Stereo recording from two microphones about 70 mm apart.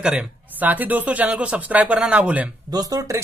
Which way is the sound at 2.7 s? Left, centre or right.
Right.